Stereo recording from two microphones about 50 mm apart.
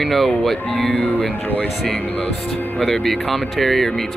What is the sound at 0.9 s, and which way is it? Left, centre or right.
Speech, left.